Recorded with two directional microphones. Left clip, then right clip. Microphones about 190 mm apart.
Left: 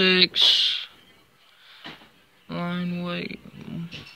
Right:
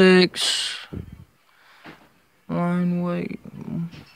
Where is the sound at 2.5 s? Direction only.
30° right (ahead or behind).